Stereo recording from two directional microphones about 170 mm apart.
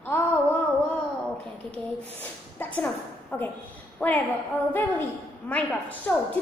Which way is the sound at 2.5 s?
10° left (ahead or behind).